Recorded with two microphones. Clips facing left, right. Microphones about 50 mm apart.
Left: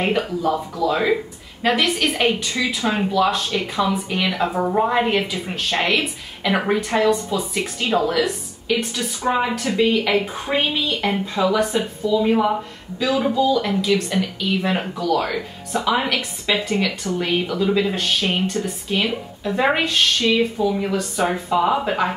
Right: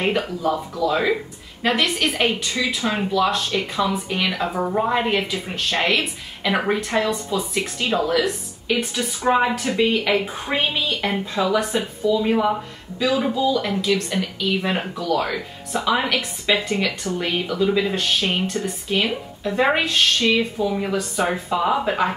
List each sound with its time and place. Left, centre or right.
0.0 s speech: centre
8.6 s speech: centre